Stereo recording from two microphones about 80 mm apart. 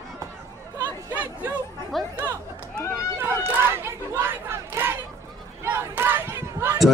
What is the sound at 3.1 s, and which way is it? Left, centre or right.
Crowd, right.